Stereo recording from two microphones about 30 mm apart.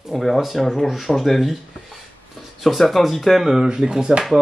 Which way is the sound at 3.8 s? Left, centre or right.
Right.